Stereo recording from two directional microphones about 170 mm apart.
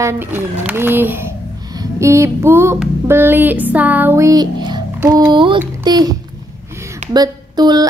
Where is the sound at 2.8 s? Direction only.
15° right (ahead or behind).